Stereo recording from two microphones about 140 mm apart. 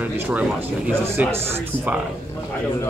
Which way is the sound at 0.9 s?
15° right (ahead or behind).